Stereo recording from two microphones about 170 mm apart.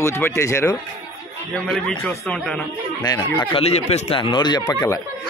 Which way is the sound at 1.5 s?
5° left (ahead or behind).